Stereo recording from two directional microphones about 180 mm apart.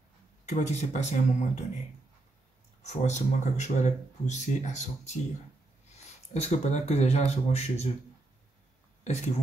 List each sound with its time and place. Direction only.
0.5 s speech: 40° left (ahead or behind)
2.8 s speech: 40° left (ahead or behind)
6.3 s speech: 40° left (ahead or behind)
9.0 s speech: 40° left (ahead or behind)